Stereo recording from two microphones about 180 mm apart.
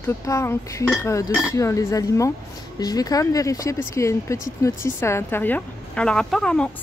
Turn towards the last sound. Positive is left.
turn(degrees=5)  # may be behind; listen again after turning